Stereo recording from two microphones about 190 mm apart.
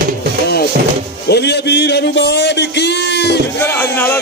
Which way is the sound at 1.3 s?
60° left (ahead or behind).